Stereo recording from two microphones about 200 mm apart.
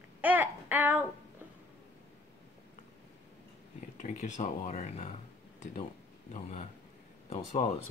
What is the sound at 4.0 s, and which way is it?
Speech, 35° left (ahead or behind).